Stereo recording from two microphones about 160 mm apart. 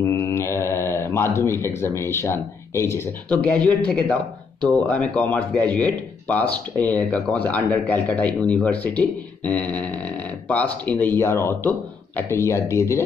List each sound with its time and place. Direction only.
0.0 s speech: 15° left (ahead or behind)